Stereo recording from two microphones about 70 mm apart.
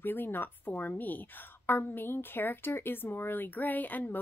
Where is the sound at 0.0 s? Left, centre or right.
Left.